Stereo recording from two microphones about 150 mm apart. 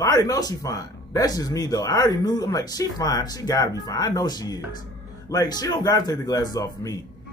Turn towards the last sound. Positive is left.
turn(degrees=25)  # may be behind; listen again after turning